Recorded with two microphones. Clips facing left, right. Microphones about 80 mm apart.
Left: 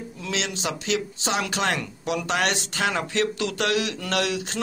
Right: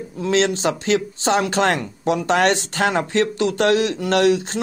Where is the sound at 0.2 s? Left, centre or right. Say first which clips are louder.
Right 11 dB; right.